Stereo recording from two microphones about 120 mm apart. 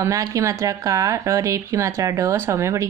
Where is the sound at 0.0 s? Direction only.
25° right (ahead or behind).